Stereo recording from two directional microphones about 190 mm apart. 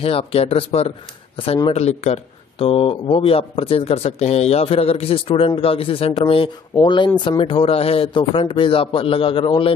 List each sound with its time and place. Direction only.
0.0 s speech: 30° left (ahead or behind)